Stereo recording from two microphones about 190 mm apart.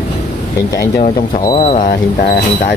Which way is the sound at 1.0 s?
25° left (ahead or behind).